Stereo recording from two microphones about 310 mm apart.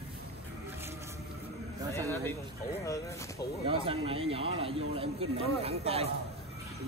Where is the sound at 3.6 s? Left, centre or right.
Centre.